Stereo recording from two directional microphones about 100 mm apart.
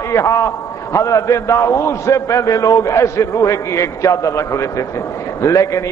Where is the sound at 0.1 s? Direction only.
30° left (ahead or behind).